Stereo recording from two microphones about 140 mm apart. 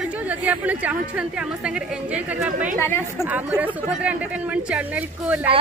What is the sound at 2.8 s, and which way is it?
Speech, 15° left (ahead or behind).